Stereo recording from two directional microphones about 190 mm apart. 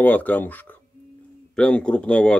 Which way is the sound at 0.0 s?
10° left (ahead or behind).